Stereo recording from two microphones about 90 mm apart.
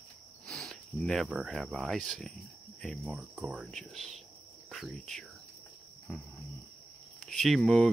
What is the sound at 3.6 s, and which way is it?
Speech, centre (ahead or behind).